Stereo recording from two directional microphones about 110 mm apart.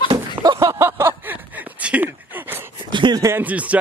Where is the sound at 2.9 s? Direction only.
45° right (ahead or behind).